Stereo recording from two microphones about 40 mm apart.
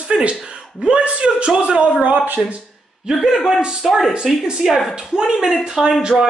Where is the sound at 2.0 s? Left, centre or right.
Right.